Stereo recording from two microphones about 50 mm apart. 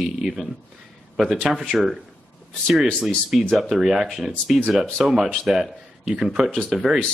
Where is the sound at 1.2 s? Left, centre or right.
Right.